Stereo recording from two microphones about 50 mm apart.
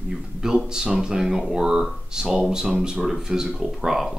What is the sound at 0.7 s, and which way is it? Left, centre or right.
Speech, centre.